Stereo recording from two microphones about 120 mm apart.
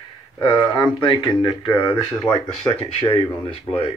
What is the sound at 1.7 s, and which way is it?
Speech, 25° left (ahead or behind).